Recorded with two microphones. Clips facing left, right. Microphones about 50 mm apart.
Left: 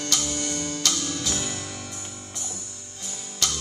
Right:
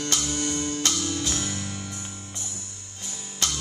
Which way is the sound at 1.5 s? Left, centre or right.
Right.